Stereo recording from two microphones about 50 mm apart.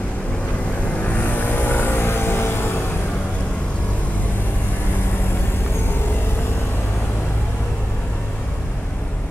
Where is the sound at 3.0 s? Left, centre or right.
Left.